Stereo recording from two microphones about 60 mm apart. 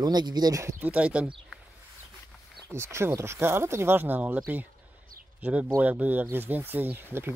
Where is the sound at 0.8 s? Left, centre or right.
Right.